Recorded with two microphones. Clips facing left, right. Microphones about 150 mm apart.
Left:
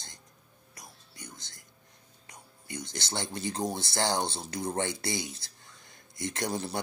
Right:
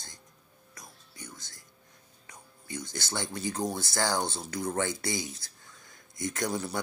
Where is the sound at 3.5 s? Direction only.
25° left (ahead or behind).